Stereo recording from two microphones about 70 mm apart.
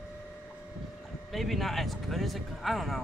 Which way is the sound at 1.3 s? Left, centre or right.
Centre.